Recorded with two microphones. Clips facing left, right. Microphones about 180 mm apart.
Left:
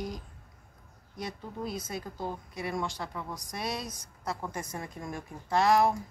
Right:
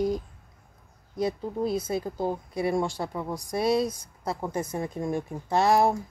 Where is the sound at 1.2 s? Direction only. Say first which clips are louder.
Right 10 dB; 30° right (ahead or behind).